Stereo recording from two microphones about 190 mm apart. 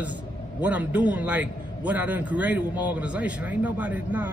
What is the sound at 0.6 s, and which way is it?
A man's voice, 10° right (ahead or behind).